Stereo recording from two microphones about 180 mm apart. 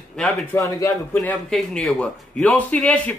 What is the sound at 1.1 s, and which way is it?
A man's voice, 5° left (ahead or behind).